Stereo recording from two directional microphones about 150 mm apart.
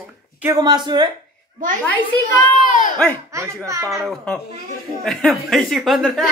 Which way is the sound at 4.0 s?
Centre (ahead or behind).